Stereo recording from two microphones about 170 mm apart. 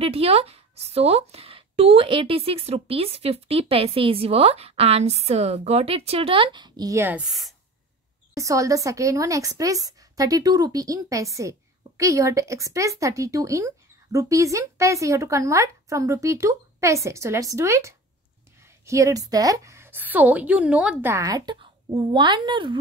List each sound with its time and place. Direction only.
0.0 s speech: 35° right (ahead or behind); by 7.5 s centre (ahead or behind)
8.4 s a woman's voice: 20° right (ahead or behind)